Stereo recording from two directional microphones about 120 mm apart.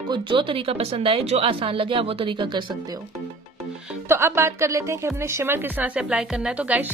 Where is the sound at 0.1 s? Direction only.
45° right (ahead or behind).